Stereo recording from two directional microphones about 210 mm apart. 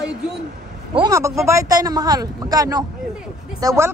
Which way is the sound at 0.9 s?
15° right (ahead or behind).